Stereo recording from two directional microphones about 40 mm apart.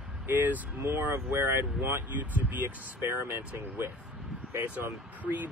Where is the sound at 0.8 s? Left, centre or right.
Right.